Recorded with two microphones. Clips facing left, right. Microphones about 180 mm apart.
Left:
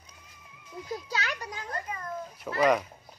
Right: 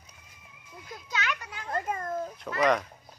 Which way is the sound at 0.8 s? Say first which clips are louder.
Even; 35° left (ahead or behind).